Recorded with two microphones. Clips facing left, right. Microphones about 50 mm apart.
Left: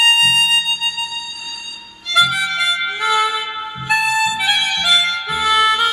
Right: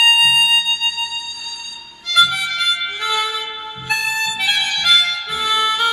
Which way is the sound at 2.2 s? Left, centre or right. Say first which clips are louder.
Left 1 dB; centre.